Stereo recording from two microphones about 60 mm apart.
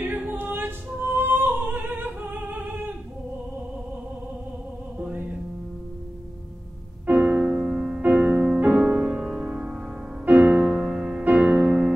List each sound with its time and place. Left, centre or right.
0.2 s opera: right
4.9 s music: right
7.1 s music: right
11.3 s music: right